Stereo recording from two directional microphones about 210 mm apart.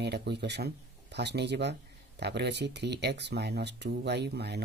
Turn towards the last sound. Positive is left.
turn(degrees=-50)  # may be behind; listen again after turning